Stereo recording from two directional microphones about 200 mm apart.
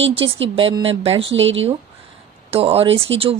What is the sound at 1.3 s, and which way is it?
Speech, 70° right (ahead or behind).